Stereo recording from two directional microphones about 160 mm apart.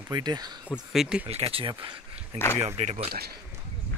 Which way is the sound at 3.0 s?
80° right.